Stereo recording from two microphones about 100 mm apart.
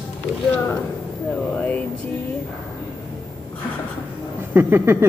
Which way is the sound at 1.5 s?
15° left (ahead or behind).